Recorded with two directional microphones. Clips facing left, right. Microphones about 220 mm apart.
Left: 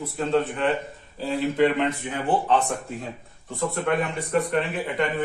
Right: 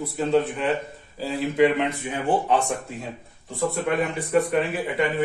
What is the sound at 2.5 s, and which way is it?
Speech, 10° right (ahead or behind).